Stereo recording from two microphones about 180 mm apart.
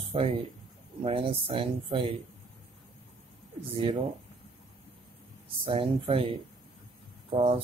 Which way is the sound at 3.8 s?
25° right (ahead or behind).